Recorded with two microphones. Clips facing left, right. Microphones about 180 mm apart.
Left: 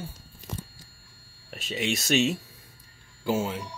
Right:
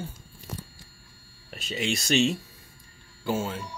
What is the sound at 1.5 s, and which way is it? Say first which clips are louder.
Speech: even; centre (ahead or behind).